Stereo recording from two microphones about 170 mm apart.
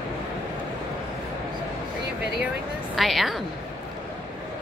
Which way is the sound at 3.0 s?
Centre (ahead or behind).